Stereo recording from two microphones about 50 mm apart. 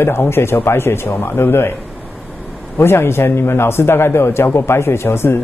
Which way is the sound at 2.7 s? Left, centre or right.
Left.